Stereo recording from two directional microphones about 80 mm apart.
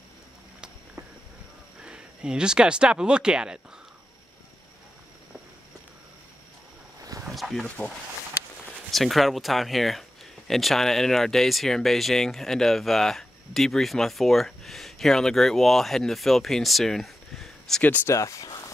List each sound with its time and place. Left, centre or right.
1.8 s speech: centre
7.0 s a sound: right
7.2 s a sound: centre
7.6 s speech: left
8.9 s speech: centre
18.0 s speech: left